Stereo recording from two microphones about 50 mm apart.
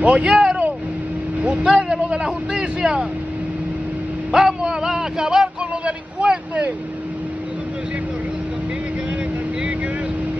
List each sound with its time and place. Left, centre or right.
0.0 s speech: right
4.3 s speech: centre